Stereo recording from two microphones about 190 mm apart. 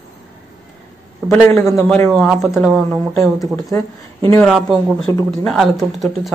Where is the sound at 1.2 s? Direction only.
5° right (ahead or behind).